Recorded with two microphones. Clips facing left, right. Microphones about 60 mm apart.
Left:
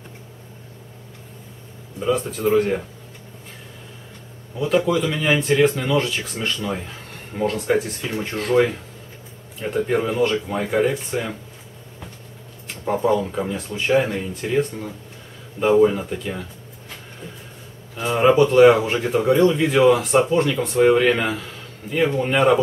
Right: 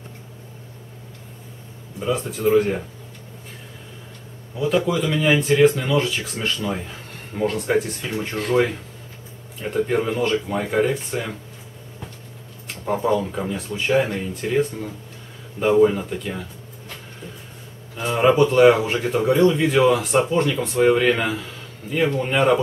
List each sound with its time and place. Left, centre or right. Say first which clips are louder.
2.0 s speech: left 2 dB; centre
4.6 s speech: left 1 dB; centre
12.8 s speech: left 1 dB; centre
18.0 s speech: left 1 dB; centre